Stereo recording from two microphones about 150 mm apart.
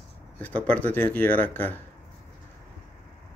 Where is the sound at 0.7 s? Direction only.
10° left (ahead or behind).